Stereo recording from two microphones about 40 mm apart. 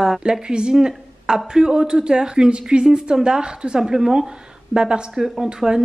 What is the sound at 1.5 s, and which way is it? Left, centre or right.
Speech, centre.